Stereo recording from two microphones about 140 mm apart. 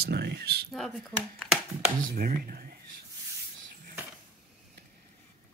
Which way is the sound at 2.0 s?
90° right.